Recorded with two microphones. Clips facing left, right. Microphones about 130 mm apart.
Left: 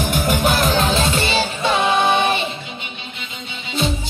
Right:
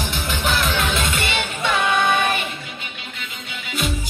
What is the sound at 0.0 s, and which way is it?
Music, 45° left (ahead or behind).